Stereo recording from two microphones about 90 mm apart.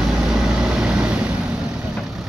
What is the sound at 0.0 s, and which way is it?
Vehicle, 5° right (ahead or behind).